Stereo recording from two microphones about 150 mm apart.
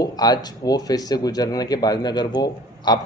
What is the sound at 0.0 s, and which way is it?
Speech, 25° left (ahead or behind).